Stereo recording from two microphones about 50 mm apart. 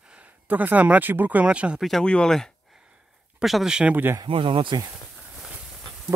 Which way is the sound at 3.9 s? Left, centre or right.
Right.